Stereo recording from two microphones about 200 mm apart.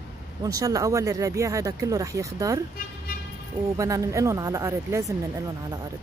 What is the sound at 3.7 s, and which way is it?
Speech, 15° right (ahead or behind).